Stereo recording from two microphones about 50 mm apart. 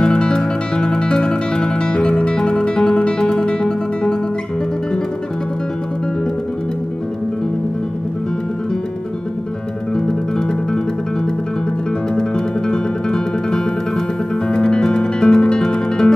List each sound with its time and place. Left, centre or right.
0.0 s music: centre
12.2 s music: centre